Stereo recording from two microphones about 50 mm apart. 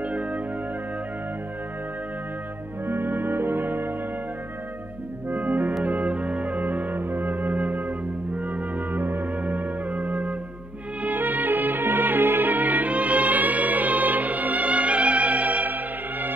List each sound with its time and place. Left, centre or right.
0.0 s music: right
2.9 s music: right
5.3 s music: right